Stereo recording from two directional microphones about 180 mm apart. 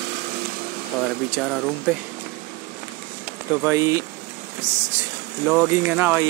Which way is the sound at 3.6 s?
15° right (ahead or behind).